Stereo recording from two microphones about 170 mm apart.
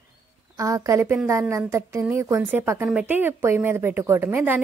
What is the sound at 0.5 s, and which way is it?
A woman's voice, 20° right (ahead or behind).